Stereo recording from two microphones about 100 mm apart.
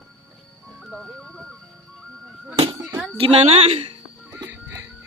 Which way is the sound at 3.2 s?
85° right.